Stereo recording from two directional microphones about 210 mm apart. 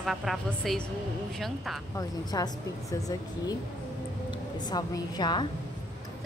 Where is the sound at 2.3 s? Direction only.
15° left (ahead or behind).